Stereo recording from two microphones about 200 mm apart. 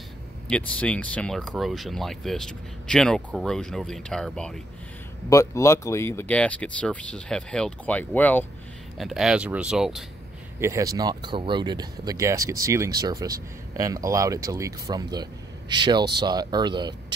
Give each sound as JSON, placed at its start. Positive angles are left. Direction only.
{"t": 0.5, "sound": "speech", "side_deg": 5}
{"t": 5.3, "sound": "speech", "side_deg": 15}
{"t": 8.9, "sound": "speech", "side_deg": 0}
{"t": 10.6, "sound": "speech", "side_deg": -15}